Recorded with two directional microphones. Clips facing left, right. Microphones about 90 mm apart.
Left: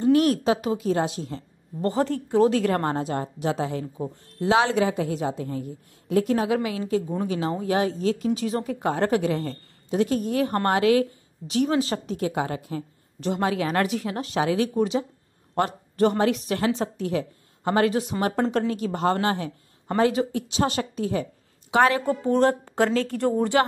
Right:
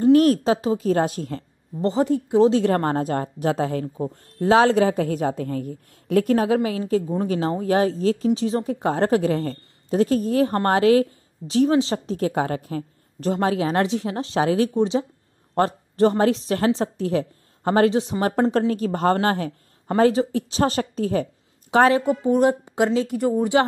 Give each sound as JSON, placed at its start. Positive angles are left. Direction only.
{"t": 0.0, "sound": "a woman's voice", "side_deg": -40}
{"t": 1.8, "sound": "a woman's voice", "side_deg": -20}
{"t": 2.7, "sound": "a woman's voice", "side_deg": -35}
{"t": 6.3, "sound": "a woman's voice", "side_deg": -35}
{"t": 12.2, "sound": "a woman's voice", "side_deg": -40}
{"t": 20.0, "sound": "a woman's voice", "side_deg": -35}
{"t": 21.9, "sound": "speech", "side_deg": -20}